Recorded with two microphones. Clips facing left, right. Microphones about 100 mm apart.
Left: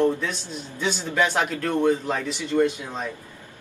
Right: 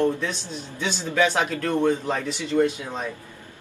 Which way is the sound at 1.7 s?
5° left (ahead or behind).